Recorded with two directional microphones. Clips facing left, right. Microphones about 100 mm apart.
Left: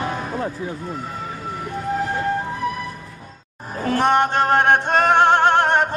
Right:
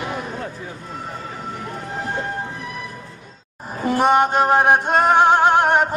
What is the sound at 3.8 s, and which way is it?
Music, 10° right (ahead or behind).